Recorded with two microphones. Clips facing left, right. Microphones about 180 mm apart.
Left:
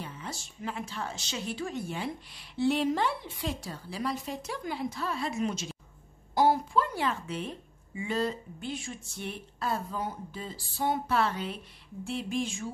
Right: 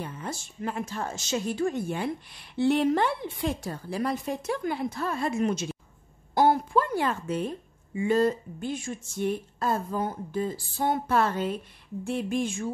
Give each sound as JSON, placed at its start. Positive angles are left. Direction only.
{"t": 0.0, "sound": "a woman's voice", "side_deg": -50}